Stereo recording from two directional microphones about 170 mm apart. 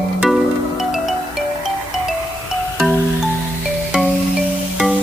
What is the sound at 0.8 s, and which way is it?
Music, 5° right (ahead or behind).